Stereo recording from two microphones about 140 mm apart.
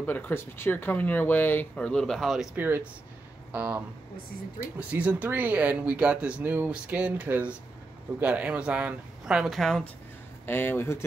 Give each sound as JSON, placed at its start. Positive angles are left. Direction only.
{"t": 0.0, "sound": "speech", "side_deg": 15}
{"t": 2.6, "sound": "speech", "side_deg": -15}
{"t": 10.4, "sound": "speech", "side_deg": 15}